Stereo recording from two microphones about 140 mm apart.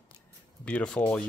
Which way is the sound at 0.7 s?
10° left (ahead or behind).